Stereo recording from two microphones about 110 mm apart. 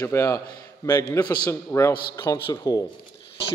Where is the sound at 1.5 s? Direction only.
25° left (ahead or behind).